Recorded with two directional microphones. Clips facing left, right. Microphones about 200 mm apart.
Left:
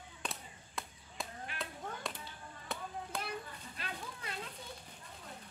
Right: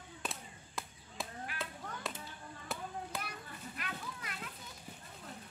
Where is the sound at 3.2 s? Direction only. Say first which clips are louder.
Left 3 dB; 30° left (ahead or behind).